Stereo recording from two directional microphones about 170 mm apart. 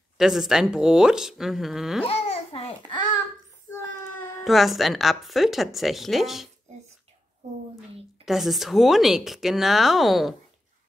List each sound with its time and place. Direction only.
0.2 s speech: centre (ahead or behind)
2.0 s babbling: 35° left (ahead or behind)
3.7 s child singing: 15° left (ahead or behind)
4.5 s speech: centre (ahead or behind)
8.3 s speech: centre (ahead or behind)